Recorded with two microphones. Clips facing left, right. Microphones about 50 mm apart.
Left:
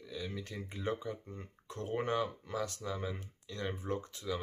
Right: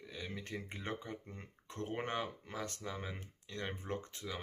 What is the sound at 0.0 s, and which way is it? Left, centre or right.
Speech, right.